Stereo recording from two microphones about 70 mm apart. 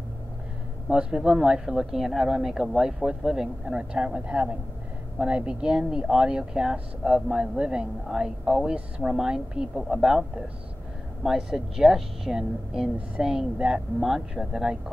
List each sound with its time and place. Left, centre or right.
0.8 s speech: centre
11.2 s speech: centre